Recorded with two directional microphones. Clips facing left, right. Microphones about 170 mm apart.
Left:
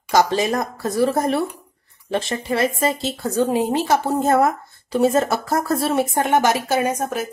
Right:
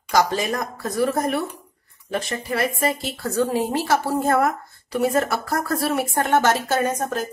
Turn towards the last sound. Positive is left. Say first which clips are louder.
# left 1 dB
turn(degrees=10)  # may be behind; listen again after turning